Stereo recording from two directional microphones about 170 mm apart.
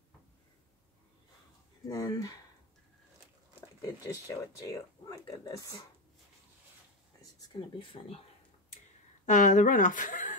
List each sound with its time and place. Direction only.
1.9 s speech: 20° left (ahead or behind)
3.8 s speech: 20° left (ahead or behind)
7.8 s speech: 30° left (ahead or behind)
9.2 s a woman's voice: 50° left (ahead or behind)